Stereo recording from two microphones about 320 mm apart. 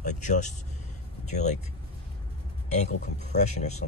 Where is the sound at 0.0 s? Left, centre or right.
Left.